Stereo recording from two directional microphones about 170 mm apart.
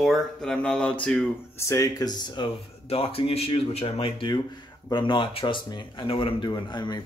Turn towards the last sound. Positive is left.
turn(degrees=25)  # may be behind; listen again after turning